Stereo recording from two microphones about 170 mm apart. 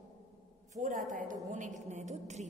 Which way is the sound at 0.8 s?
50° right (ahead or behind).